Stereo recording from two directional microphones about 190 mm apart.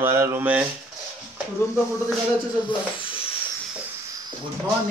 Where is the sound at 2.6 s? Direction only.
30° left (ahead or behind).